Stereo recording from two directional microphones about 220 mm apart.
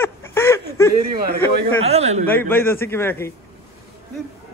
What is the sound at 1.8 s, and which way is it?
Speech, 30° right (ahead or behind).